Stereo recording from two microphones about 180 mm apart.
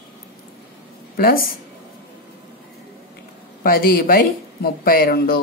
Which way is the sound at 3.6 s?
55° left (ahead or behind).